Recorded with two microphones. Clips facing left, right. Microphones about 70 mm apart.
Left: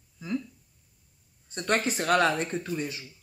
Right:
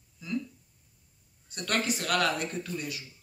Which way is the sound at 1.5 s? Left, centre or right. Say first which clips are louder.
Left 3 dB; left.